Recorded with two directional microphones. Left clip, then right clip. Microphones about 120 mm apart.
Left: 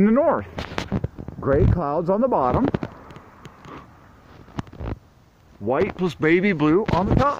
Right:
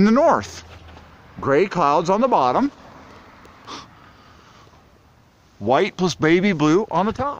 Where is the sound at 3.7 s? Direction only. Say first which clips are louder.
Right 6 dB; 70° right (ahead or behind).